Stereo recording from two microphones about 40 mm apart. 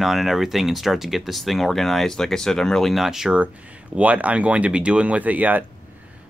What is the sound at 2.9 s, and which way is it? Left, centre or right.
Speech, centre.